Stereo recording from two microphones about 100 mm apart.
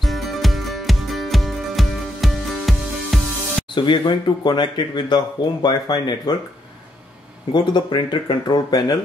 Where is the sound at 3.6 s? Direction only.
55° left (ahead or behind).